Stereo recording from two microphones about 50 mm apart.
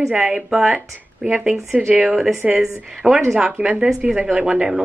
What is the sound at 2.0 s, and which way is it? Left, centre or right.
A woman's voice, centre.